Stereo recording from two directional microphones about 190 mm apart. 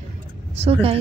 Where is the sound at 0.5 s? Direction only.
30° right (ahead or behind).